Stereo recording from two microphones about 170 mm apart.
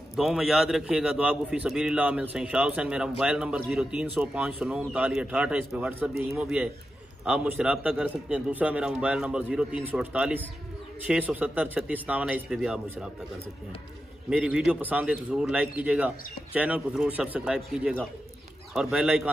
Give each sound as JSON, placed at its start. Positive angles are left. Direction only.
{"t": 0.1, "sound": "a man's voice", "side_deg": -5}
{"t": 14.3, "sound": "a man's voice", "side_deg": -5}